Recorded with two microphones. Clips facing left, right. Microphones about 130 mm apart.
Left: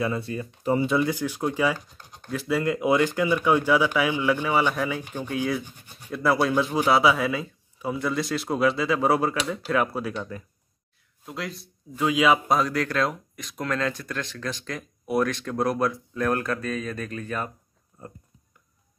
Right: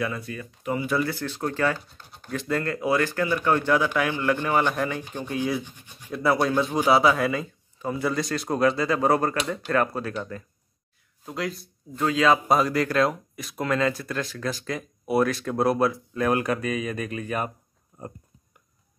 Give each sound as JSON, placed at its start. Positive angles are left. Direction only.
{"t": 0.0, "sound": "speech", "side_deg": 25}
{"t": 2.6, "sound": "speech", "side_deg": 20}
{"t": 12.4, "sound": "speech", "side_deg": 0}
{"t": 17.9, "sound": "a sound", "side_deg": -20}